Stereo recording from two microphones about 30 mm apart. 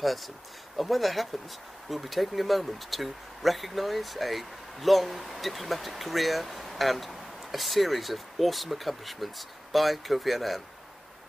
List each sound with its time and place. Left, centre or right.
0.7 s speech: centre